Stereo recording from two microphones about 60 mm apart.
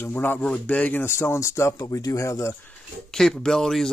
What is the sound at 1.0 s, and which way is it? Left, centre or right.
Speech, left.